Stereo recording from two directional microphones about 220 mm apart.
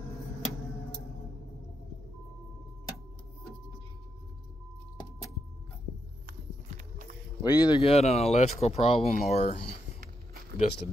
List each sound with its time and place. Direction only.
7.4 s speech: 20° left (ahead or behind)